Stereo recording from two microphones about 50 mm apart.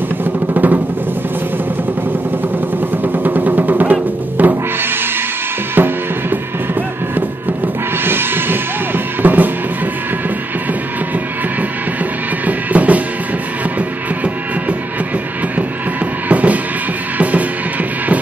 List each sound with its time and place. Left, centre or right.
0.2 s music: right
3.0 s music: right
5.8 s drum kit: right
7.2 s music: right
12.4 s music: right
16.3 s music: right